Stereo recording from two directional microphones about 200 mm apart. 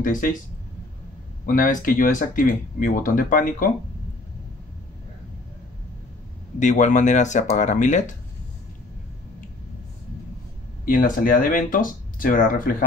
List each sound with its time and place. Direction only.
0.0 s speech: 40° left (ahead or behind)
1.4 s speech: 40° left (ahead or behind)
6.6 s speech: 40° left (ahead or behind)
10.9 s speech: 45° left (ahead or behind)